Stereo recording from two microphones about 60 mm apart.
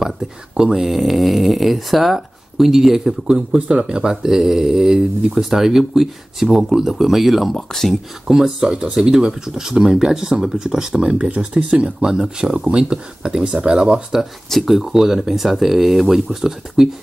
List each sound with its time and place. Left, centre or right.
0.6 s speech: centre
8.3 s speech: centre
14.5 s speech: centre